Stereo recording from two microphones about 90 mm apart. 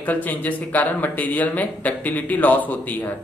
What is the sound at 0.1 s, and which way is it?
Speech, 20° left (ahead or behind).